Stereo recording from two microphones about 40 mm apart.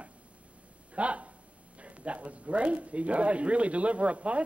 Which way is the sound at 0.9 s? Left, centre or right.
Right.